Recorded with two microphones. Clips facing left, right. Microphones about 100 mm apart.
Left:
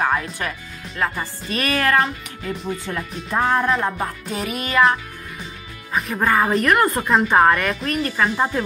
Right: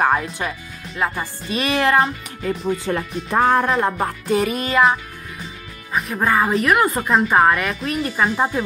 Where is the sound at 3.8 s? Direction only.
55° right (ahead or behind).